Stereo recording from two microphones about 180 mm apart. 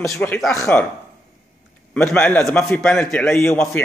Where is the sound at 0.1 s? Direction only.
10° left (ahead or behind).